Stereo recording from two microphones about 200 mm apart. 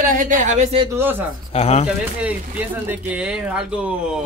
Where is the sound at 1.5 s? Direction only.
30° left (ahead or behind).